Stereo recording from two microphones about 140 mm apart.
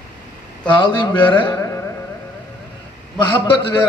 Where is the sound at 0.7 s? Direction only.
35° left (ahead or behind).